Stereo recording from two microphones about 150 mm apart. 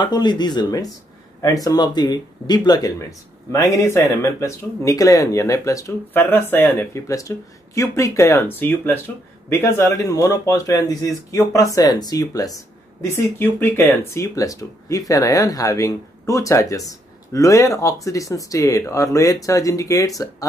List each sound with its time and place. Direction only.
0.0 s speech: 30° left (ahead or behind)